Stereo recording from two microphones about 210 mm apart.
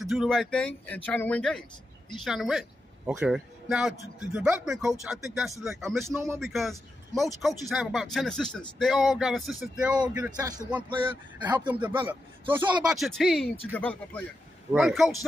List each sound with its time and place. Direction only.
0.0 s a man's voice: centre (ahead or behind)
6.0 s a man's voice: 15° right (ahead or behind)
6.4 s a man's voice: centre (ahead or behind)
9.9 s speech: 20° right (ahead or behind)
10.2 s a man's voice: 10° right (ahead or behind)
10.9 s speech: 25° right (ahead or behind)
11.8 s a man's voice: 10° right (ahead or behind)